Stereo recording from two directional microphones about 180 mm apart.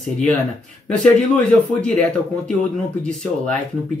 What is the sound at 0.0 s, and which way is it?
Speech, 5° left (ahead or behind).